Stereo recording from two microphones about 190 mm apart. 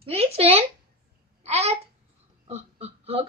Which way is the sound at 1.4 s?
35° right (ahead or behind).